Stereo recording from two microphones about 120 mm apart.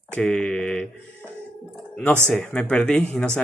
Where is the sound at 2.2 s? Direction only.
10° left (ahead or behind).